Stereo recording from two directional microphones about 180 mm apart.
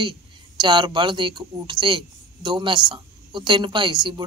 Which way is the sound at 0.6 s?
25° right (ahead or behind).